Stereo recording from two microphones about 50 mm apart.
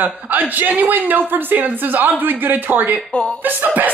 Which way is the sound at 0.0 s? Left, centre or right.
Right.